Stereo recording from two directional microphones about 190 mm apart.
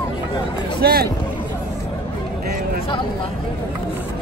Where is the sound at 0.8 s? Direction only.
55° right (ahead or behind).